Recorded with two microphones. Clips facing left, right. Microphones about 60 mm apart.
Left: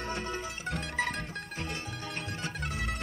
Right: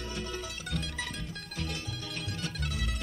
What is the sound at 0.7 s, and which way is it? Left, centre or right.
Music, left.